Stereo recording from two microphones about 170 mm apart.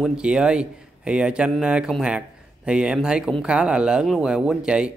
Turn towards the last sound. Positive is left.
turn(degrees=-5)  # may be behind; listen again after turning